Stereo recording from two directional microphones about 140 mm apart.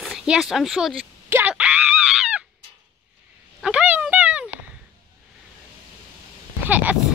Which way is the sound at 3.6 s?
5° right (ahead or behind).